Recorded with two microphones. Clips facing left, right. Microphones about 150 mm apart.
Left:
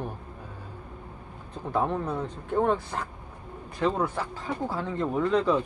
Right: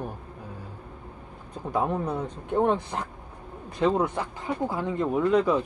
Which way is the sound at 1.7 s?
15° right (ahead or behind).